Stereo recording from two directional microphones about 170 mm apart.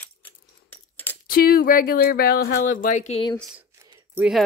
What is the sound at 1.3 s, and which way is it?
Speech, 60° left (ahead or behind).